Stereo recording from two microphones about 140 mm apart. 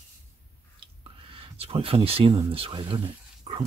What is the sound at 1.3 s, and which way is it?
Speech, 45° right (ahead or behind).